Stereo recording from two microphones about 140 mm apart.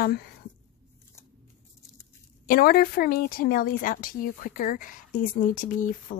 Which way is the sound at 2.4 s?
90° left.